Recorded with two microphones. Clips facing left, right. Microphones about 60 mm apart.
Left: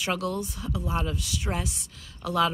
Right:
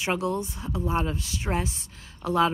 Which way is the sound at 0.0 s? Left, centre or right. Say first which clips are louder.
Right 2 dB; right.